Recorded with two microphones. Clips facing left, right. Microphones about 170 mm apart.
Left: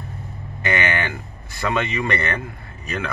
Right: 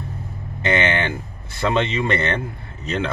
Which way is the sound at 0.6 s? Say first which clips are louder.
Right 3 dB; 25° right (ahead or behind).